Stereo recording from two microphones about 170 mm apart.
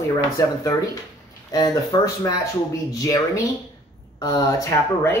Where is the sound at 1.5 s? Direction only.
20° left (ahead or behind).